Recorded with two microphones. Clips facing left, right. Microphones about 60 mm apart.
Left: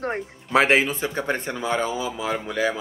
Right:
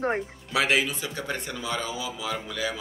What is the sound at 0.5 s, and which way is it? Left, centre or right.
Speech, left.